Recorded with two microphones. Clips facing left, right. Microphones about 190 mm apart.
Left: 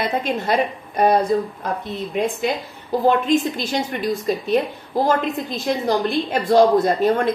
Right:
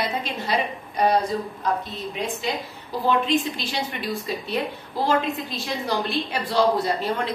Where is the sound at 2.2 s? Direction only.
55° left (ahead or behind).